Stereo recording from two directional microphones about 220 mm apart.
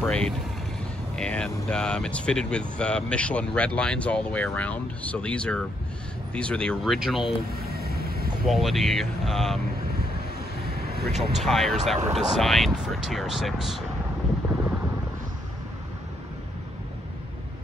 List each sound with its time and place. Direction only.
0.0 s speech: 5° left (ahead or behind)
7.5 s vehicle: 45° right (ahead or behind)
8.5 s speech: centre (ahead or behind)
11.3 s speech: centre (ahead or behind)